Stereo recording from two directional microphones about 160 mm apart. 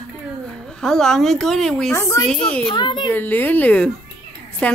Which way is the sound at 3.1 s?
10° left (ahead or behind).